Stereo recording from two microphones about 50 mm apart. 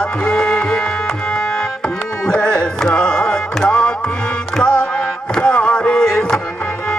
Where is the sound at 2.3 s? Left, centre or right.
Centre.